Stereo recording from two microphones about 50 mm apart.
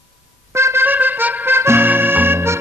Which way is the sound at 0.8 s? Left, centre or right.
Right.